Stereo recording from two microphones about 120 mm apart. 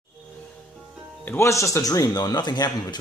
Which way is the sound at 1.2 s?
20° left (ahead or behind).